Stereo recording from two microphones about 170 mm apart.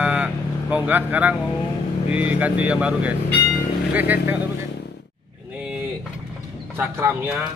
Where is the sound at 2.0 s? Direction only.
10° right (ahead or behind).